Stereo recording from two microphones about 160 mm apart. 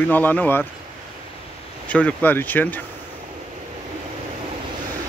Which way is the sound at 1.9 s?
10° left (ahead or behind).